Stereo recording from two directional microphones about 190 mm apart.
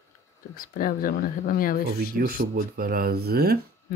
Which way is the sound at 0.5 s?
45° left (ahead or behind).